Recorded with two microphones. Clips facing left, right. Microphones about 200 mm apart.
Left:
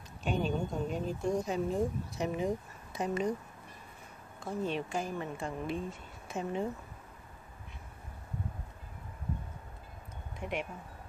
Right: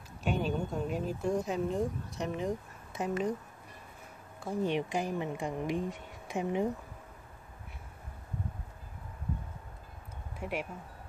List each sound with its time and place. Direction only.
0.2 s speech: centre (ahead or behind)
4.4 s speech: 15° right (ahead or behind)
10.4 s speech: 5° right (ahead or behind)